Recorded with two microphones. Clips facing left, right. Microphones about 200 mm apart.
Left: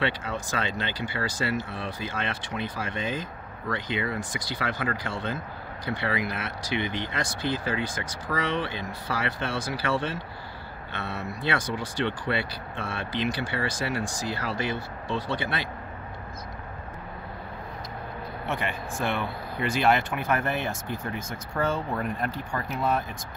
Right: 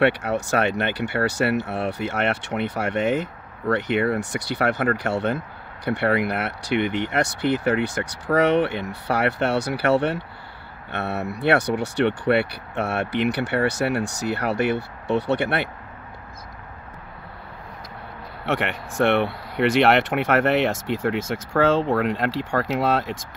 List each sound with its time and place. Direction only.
0.0 s speech: 70° right (ahead or behind)
18.4 s speech: 75° right (ahead or behind)